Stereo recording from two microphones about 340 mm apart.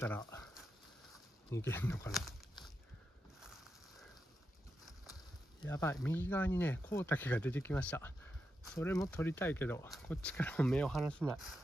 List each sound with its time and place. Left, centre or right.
0.0 s a sound: centre
1.5 s speech: centre
3.3 s boat: centre
5.6 s speech: centre